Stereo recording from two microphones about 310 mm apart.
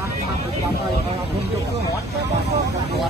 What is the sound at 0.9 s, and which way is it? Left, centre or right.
Speech, left.